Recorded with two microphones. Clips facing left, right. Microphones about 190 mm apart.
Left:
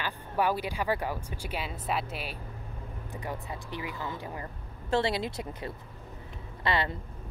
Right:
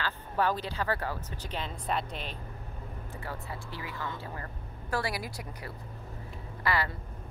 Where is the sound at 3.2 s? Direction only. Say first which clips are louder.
Left 3 dB; 15° left (ahead or behind).